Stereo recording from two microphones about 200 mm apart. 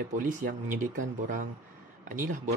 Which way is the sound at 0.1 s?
40° right (ahead or behind).